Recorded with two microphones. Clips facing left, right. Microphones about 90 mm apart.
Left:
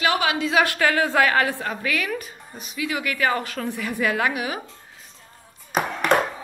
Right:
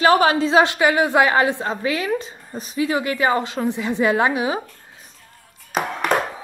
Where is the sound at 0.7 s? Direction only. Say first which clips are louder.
Right 3 dB; 15° right (ahead or behind).